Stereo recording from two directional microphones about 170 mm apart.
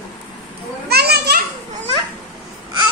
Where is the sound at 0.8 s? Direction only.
70° right (ahead or behind).